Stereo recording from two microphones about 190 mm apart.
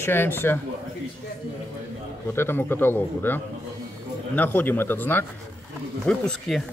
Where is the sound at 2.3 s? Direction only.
10° left (ahead or behind).